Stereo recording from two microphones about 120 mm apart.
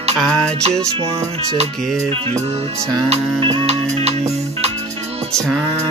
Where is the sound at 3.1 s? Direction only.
45° right (ahead or behind).